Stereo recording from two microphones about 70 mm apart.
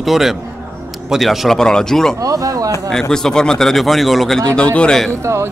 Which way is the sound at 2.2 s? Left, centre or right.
Right.